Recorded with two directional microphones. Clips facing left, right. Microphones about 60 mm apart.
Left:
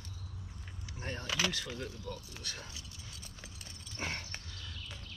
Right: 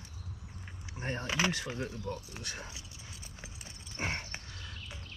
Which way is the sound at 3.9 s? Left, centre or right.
Right.